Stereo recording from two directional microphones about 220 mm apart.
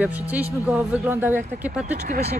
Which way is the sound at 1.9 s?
30° right (ahead or behind).